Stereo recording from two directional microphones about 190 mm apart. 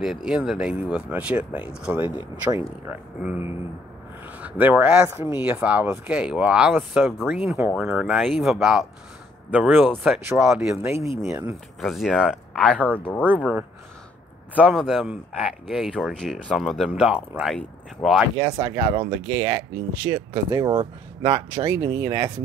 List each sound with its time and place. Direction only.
0.0 s speech: 5° right (ahead or behind)
11.8 s speech: centre (ahead or behind)
14.5 s speech: 5° right (ahead or behind)
18.4 s speech: 20° right (ahead or behind)